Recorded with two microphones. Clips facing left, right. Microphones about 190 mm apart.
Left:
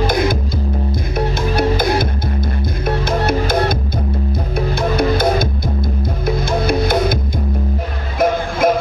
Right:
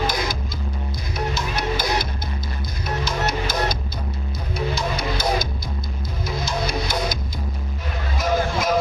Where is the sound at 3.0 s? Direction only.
55° left (ahead or behind).